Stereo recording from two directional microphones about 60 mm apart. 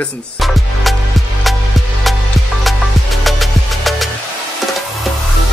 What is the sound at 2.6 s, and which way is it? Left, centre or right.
Music, centre.